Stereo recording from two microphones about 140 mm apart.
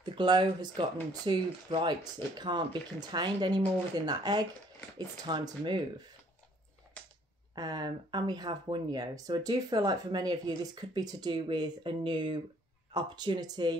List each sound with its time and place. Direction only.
0.0 s speech: 35° right (ahead or behind)
7.0 s typewriter: 10° left (ahead or behind)
7.5 s speech: 30° right (ahead or behind)